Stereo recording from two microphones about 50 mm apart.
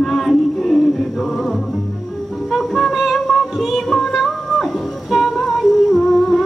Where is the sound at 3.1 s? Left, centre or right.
Centre.